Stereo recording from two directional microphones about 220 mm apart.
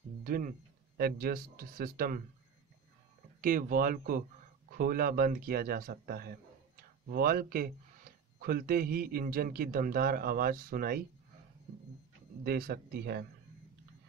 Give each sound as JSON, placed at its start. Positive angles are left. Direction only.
{"t": 0.2, "sound": "a sound", "side_deg": -40}
{"t": 0.9, "sound": "a man's voice", "side_deg": -45}
{"t": 3.3, "sound": "a man's voice", "side_deg": -40}
{"t": 12.4, "sound": "a man's voice", "side_deg": -45}